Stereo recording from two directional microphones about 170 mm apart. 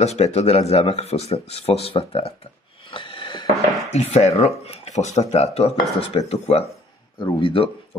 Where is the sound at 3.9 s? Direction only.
40° left (ahead or behind).